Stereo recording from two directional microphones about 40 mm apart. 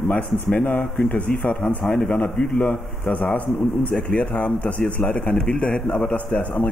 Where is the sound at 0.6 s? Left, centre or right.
Left.